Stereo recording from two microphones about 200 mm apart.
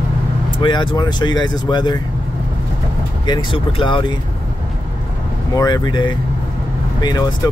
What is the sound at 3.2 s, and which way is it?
Speech, 25° left (ahead or behind).